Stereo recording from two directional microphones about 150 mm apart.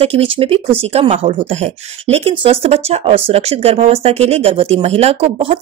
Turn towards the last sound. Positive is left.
turn(degrees=-45)  # may be behind; listen again after turning